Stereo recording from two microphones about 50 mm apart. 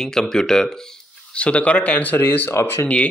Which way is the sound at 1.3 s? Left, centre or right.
Left.